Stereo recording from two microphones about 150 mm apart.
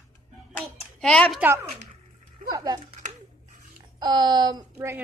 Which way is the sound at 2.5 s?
25° right (ahead or behind).